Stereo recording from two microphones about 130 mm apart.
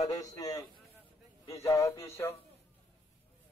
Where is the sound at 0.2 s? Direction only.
25° left (ahead or behind).